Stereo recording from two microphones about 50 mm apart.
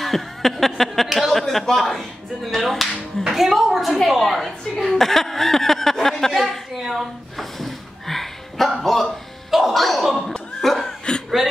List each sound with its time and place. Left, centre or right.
0.0 s chuckle: centre
1.4 s a woman's voice: centre
6.8 s a sound: centre
10.6 s cough: centre